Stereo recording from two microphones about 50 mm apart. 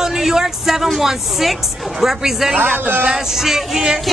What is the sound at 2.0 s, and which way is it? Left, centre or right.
Speech, centre.